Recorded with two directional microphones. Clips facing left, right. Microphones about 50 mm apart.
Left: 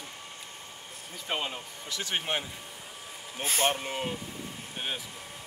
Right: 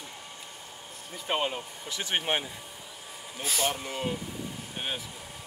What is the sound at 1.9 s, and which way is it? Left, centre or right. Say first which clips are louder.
Speech: right 2 dB; right.